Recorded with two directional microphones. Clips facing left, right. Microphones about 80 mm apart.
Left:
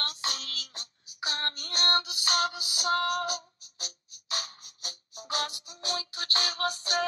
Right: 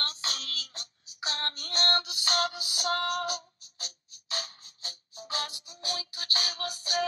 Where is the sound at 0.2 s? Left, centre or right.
Left.